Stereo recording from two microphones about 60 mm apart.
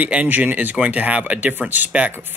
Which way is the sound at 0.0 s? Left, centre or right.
Right.